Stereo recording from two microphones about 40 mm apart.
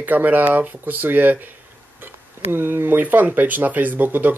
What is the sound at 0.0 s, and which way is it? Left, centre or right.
Speech, right.